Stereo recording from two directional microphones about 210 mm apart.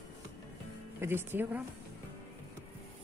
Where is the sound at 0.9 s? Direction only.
10° right (ahead or behind).